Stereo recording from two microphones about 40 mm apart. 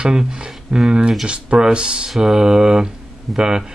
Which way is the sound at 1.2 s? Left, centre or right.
Right.